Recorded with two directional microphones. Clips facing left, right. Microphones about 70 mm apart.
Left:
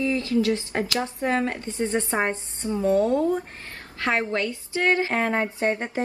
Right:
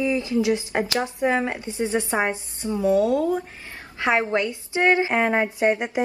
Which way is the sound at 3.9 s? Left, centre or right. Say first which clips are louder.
Right 3 dB; centre.